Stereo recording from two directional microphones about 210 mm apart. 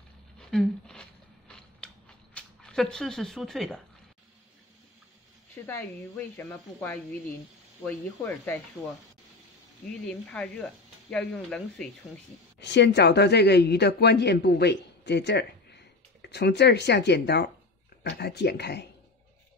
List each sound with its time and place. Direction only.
0.5 s a sound: 5° left (ahead or behind)
1.5 s mechanisms: 5° left (ahead or behind)
5.7 s a woman's voice: 10° left (ahead or behind)
10.0 s speech: 5° left (ahead or behind)
12.5 s a woman's voice: 55° left (ahead or behind)